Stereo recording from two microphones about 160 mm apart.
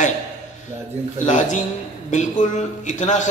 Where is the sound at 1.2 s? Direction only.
50° left (ahead or behind).